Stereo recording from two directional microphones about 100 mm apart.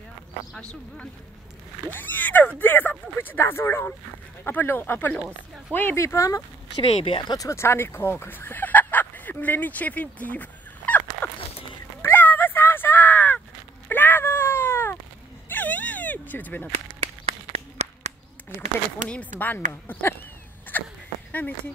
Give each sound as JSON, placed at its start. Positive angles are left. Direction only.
{"t": 0.6, "sound": "speech", "side_deg": 10}
{"t": 6.8, "sound": "speech", "side_deg": 55}
{"t": 7.3, "sound": "speech", "side_deg": 30}
{"t": 12.0, "sound": "crow", "side_deg": 20}
{"t": 13.8, "sound": "cat", "side_deg": 20}
{"t": 15.4, "sound": "a sound", "side_deg": 20}
{"t": 17.3, "sound": "a sound", "side_deg": -90}
{"t": 19.0, "sound": "speech", "side_deg": 15}
{"t": 20.7, "sound": "a sound", "side_deg": 20}